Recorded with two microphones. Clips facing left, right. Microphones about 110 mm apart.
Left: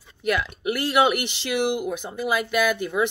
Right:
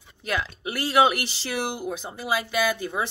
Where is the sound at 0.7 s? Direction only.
35° right (ahead or behind).